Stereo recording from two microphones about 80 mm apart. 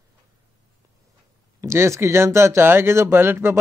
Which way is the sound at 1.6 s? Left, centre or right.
Right.